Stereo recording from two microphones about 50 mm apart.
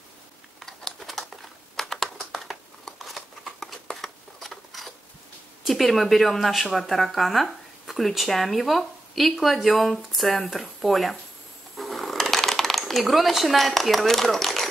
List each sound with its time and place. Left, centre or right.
0.6 s crumpling: centre
5.7 s a woman's voice: centre
11.7 s sewing machine: centre